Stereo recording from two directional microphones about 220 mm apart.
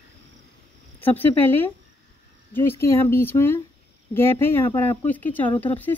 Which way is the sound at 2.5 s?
10° left (ahead or behind).